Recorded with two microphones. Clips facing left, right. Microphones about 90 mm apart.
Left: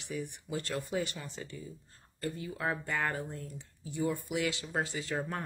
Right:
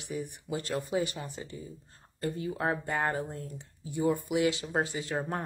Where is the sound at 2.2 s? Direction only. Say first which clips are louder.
Right 4 dB; 35° right (ahead or behind).